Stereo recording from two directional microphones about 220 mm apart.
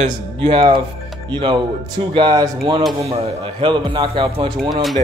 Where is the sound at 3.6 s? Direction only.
20° right (ahead or behind).